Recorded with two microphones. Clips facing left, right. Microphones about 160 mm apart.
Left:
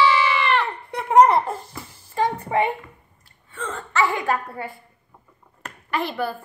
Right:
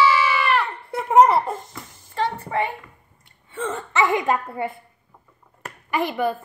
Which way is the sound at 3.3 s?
25° right (ahead or behind).